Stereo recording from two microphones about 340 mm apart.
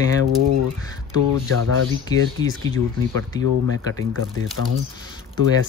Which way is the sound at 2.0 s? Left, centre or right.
Centre.